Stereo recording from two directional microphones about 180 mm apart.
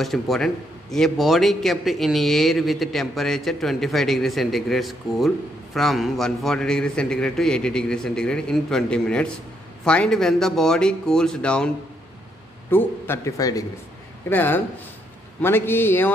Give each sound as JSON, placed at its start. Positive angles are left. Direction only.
{"t": 0.0, "sound": "a man's voice", "side_deg": 0}
{"t": 12.7, "sound": "a man's voice", "side_deg": 10}